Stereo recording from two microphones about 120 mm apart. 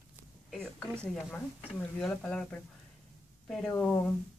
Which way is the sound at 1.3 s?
15° left (ahead or behind).